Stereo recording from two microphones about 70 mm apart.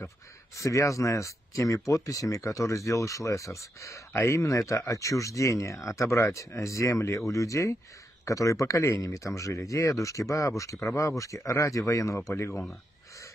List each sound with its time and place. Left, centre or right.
0.6 s speech: left